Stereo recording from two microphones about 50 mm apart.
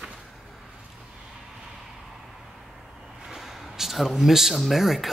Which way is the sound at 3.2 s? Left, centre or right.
Centre.